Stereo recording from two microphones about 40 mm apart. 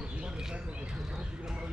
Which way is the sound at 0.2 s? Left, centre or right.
Centre.